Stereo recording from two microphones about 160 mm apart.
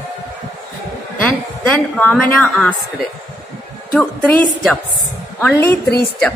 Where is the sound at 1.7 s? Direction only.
10° left (ahead or behind).